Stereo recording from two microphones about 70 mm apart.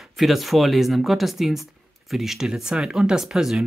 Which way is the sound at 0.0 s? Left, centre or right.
Centre.